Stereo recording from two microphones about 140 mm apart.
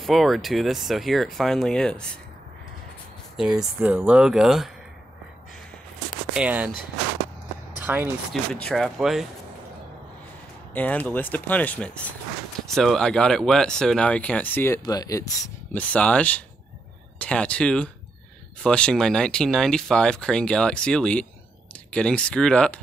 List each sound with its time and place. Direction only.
0.0 s speech: centre (ahead or behind)
3.3 s speech: 5° right (ahead or behind)
6.3 s speech: 10° right (ahead or behind)
7.8 s speech: 15° right (ahead or behind)
8.5 s speech: 5° left (ahead or behind)
10.7 s speech: 10° left (ahead or behind)
14.9 s speech: 25° left (ahead or behind)
15.7 s speech: 10° left (ahead or behind)